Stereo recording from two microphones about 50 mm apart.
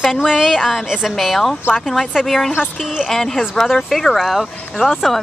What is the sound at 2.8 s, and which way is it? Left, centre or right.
Speech, centre.